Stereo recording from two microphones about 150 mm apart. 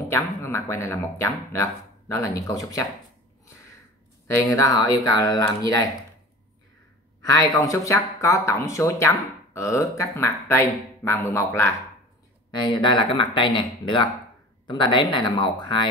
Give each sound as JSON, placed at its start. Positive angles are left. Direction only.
{"t": 0.1, "sound": "speech", "side_deg": 15}
{"t": 3.4, "sound": "a sound", "side_deg": 20}
{"t": 4.3, "sound": "speech", "side_deg": 20}
{"t": 7.2, "sound": "speech", "side_deg": 25}
{"t": 12.5, "sound": "speech", "side_deg": 30}